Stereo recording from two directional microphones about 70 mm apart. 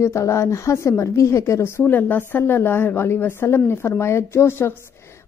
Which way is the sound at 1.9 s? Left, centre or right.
Left.